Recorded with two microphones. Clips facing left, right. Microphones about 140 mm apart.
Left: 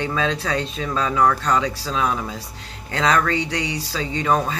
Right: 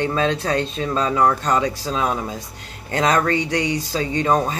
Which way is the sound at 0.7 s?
25° right (ahead or behind).